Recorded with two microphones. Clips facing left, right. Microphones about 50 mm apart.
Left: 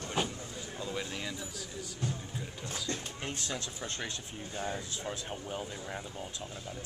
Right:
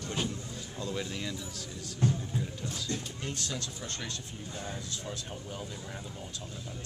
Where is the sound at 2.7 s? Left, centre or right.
Left.